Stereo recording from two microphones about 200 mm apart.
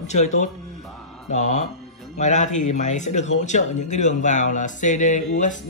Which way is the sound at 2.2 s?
35° left (ahead or behind).